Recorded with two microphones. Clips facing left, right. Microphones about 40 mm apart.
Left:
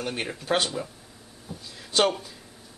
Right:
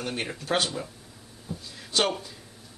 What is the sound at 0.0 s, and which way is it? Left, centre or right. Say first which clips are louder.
Speech: left 1 dB; centre.